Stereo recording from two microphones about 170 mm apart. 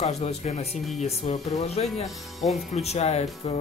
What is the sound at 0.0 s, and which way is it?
Speech, 40° left (ahead or behind).